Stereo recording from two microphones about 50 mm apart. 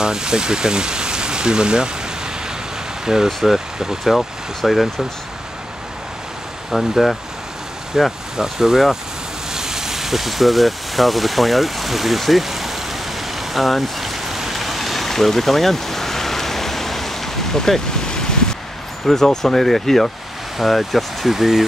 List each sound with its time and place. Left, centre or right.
0.0 s speech: centre
3.3 s speech: centre
6.7 s speech: centre
7.9 s speech: centre
13.4 s rain: centre
19.0 s speech: centre